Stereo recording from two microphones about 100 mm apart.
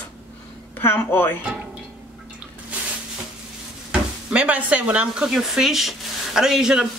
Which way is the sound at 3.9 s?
10° right (ahead or behind).